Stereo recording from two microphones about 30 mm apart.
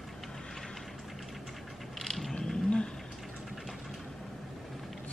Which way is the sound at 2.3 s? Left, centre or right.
Left.